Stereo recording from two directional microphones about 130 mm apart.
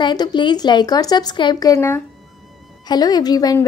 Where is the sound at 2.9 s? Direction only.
30° left (ahead or behind).